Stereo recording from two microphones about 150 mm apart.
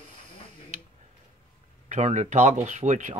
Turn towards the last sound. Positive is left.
turn(degrees=-55)  # may be behind; listen again after turning